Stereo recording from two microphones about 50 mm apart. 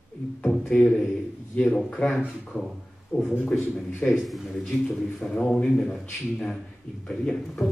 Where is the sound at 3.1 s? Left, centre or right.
Centre.